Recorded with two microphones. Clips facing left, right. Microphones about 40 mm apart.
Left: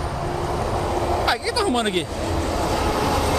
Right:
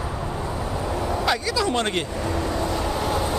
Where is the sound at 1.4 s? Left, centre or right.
Centre.